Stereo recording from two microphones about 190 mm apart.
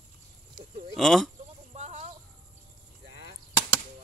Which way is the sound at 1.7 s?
35° right (ahead or behind).